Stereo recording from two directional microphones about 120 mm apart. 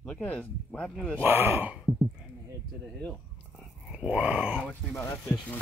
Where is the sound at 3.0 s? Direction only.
10° left (ahead or behind).